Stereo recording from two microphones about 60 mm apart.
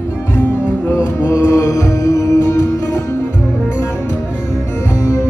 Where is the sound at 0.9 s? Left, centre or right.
Left.